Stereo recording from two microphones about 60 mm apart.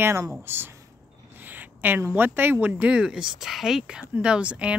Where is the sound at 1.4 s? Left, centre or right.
Right.